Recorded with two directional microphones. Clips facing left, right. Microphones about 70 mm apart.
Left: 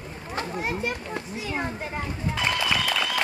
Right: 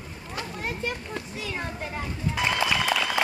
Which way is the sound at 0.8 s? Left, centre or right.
Centre.